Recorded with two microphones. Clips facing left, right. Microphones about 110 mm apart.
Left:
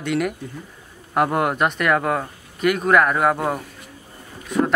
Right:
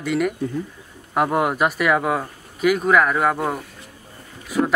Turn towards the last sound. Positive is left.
turn(degrees=-5)  # may be behind; listen again after turning